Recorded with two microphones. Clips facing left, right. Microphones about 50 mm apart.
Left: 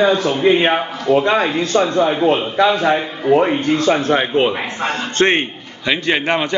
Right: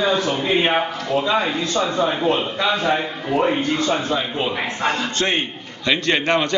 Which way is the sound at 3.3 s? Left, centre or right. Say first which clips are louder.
Left 6 dB; left.